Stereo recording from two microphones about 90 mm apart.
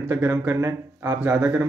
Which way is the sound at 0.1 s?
25° right (ahead or behind).